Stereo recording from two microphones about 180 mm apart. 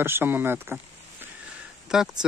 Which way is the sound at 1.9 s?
5° right (ahead or behind).